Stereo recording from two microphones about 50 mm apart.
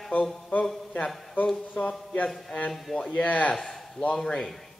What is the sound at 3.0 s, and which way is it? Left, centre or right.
Speech, left.